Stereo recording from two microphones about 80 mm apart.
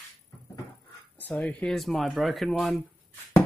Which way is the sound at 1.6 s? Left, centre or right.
Centre.